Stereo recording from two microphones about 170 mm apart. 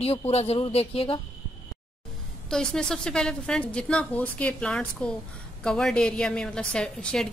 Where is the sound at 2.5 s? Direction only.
5° left (ahead or behind).